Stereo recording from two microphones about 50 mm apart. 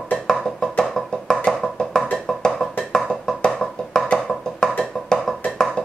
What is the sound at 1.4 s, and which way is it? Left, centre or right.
Music, centre.